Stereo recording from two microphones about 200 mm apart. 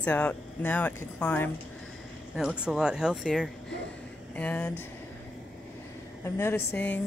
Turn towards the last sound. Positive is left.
turn(degrees=10)  # may be behind; listen again after turning